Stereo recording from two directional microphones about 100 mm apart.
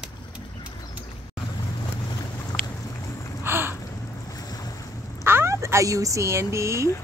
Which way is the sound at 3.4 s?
25° right (ahead or behind).